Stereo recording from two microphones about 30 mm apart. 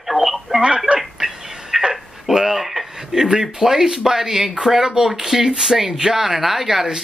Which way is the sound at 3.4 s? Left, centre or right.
Centre.